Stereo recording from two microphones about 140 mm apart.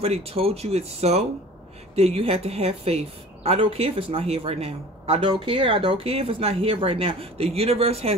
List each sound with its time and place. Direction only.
0.0 s a woman's voice: 45° right (ahead or behind)